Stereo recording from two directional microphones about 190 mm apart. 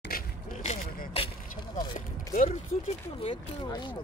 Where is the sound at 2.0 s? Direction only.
40° left (ahead or behind).